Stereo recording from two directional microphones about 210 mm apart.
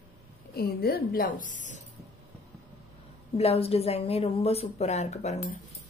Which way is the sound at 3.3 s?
30° left (ahead or behind).